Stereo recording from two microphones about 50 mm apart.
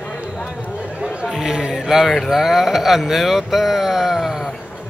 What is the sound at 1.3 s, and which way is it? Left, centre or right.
Speech, centre.